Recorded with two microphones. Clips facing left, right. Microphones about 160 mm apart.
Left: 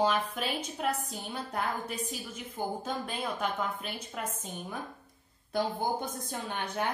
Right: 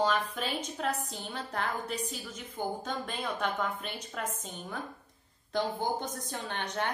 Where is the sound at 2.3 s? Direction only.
10° left (ahead or behind).